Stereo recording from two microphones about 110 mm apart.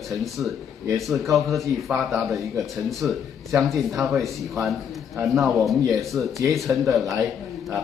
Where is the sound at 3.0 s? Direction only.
15° right (ahead or behind).